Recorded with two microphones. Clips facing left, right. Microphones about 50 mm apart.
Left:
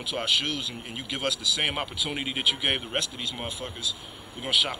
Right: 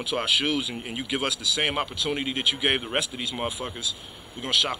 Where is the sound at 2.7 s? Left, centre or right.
Centre.